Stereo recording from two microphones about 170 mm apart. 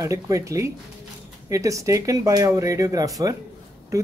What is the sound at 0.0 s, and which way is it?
A man's voice, 20° right (ahead or behind).